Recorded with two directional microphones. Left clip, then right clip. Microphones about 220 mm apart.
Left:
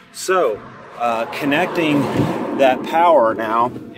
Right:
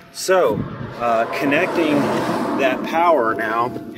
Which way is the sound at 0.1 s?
10° left (ahead or behind).